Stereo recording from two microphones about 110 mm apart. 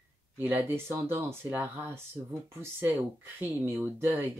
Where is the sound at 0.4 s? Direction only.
20° right (ahead or behind).